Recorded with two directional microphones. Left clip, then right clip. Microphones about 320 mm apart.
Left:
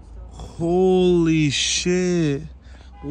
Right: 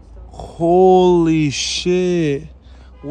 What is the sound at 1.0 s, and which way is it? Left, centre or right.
Speech, centre.